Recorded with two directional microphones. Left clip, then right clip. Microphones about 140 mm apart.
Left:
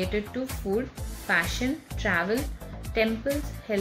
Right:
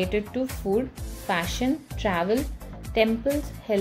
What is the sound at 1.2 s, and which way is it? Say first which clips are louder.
A woman's voice: even; 40° right (ahead or behind).